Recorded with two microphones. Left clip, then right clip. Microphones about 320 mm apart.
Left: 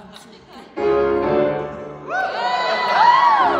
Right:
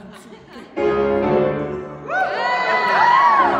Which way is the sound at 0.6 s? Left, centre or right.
Centre.